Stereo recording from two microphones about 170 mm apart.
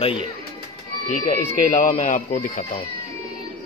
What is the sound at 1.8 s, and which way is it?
Speech, 45° left (ahead or behind).